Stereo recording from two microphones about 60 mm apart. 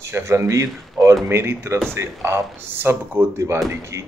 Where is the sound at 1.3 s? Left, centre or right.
Right.